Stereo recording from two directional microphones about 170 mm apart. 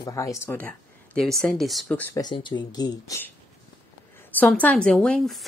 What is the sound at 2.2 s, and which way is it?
Speech, 25° left (ahead or behind).